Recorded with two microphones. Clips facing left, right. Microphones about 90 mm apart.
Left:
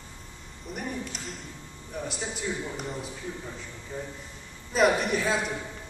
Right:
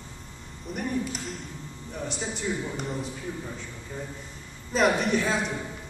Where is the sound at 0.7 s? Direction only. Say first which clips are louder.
Right 5 dB; centre (ahead or behind).